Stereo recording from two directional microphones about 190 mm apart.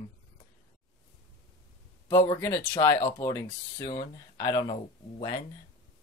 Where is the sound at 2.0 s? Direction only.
15° left (ahead or behind).